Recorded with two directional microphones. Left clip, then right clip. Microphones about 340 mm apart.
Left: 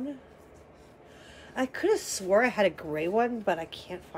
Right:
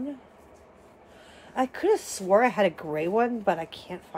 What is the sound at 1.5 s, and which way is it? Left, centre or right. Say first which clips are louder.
Speech: right 3 dB; centre.